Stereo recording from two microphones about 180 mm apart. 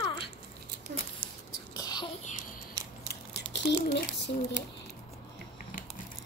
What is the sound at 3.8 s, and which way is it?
Speech, 60° left (ahead or behind).